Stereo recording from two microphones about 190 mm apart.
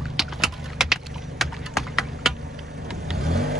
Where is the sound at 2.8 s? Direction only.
Centre (ahead or behind).